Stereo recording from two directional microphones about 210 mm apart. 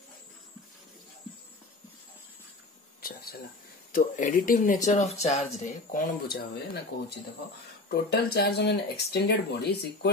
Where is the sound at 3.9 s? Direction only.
40° left (ahead or behind).